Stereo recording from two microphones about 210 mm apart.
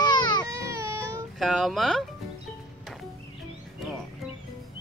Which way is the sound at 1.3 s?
Centre (ahead or behind).